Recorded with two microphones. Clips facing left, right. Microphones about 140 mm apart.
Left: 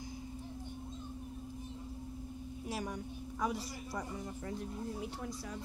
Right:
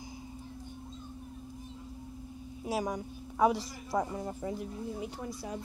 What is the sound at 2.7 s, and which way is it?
A woman's voice, 90° right.